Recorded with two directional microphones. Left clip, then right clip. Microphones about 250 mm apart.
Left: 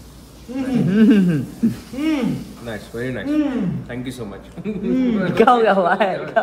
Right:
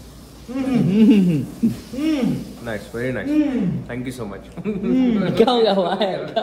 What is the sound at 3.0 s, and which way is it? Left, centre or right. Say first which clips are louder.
Speech: right 1 dB; centre.